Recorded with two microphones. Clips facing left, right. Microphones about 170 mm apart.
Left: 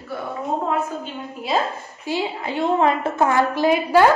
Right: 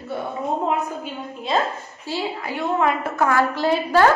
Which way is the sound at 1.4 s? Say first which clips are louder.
Even; 10° left (ahead or behind).